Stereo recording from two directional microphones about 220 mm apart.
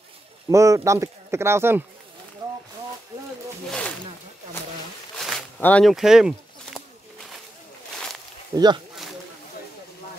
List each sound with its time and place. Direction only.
0.5 s speech: 15° right (ahead or behind)
5.1 s a sound: centre (ahead or behind)
8.5 s speech: 20° right (ahead or behind)